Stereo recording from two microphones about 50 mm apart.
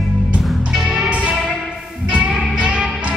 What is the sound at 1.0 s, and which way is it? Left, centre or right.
Music, right.